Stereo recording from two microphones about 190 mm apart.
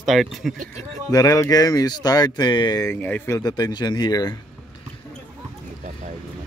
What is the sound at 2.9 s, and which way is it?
Speech, 10° left (ahead or behind).